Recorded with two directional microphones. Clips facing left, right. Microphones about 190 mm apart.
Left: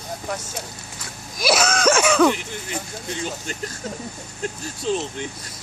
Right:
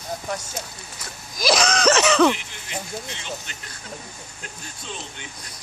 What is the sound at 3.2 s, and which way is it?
Speech, 40° left (ahead or behind).